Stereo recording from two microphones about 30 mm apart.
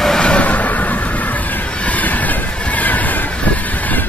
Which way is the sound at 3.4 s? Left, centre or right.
Left.